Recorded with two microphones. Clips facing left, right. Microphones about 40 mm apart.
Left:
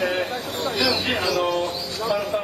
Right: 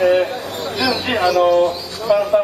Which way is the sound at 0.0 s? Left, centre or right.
Right.